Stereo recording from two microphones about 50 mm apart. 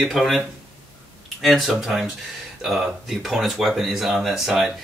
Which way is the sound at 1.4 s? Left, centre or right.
Centre.